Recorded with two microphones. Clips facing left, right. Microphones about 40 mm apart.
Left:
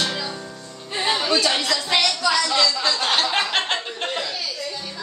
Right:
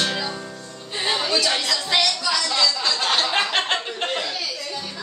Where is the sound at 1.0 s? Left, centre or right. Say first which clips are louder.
Left 1 dB; centre.